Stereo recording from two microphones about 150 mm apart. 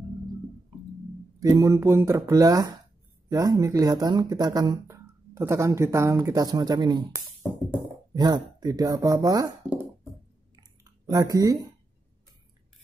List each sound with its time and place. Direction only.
1.4 s speech: 25° right (ahead or behind)
8.1 s speech: 25° right (ahead or behind)
10.5 s chewing: 25° right (ahead or behind)